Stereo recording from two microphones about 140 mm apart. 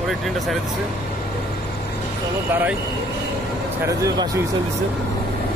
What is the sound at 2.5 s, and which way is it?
Speech, 15° right (ahead or behind).